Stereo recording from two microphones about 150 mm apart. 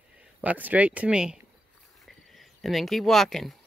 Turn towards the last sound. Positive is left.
turn(degrees=0)  # may be behind; listen again after turning